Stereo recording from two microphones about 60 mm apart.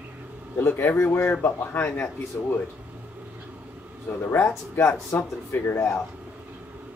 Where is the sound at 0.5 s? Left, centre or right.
Left.